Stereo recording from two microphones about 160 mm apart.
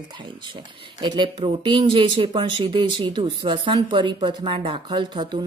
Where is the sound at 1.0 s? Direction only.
30° right (ahead or behind).